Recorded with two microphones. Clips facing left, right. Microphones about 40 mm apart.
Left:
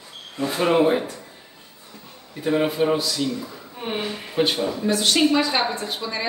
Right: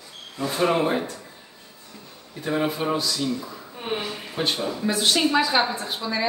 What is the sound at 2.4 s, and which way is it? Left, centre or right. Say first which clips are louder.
A man's voice: left 4 dB; centre.